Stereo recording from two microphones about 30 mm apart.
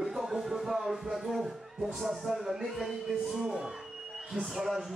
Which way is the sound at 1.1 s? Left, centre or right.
Centre.